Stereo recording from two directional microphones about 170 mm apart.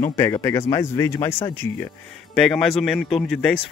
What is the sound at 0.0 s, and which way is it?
Speech, 15° left (ahead or behind).